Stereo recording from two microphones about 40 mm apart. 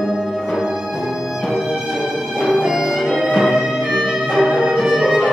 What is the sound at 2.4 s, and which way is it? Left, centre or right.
Music, centre.